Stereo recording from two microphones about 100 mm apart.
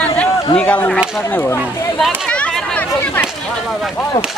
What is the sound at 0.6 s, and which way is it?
Speech, 15° left (ahead or behind).